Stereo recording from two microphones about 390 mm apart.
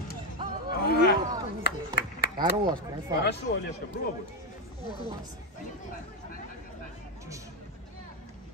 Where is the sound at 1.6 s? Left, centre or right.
Left.